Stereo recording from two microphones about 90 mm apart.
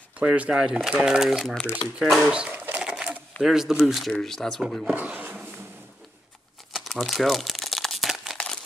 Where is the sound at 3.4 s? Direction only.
5° right (ahead or behind).